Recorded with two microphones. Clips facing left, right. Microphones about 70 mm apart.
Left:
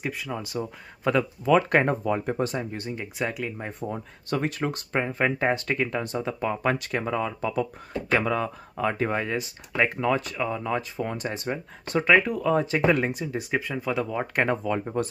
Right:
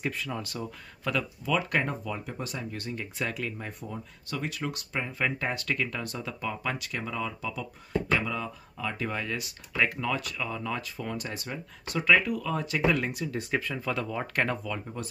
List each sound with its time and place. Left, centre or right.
0.0 s speech: centre
1.4 s speech: left
3.9 s speech: left
8.9 s speech: left
12.9 s speech: left
14.6 s speech: left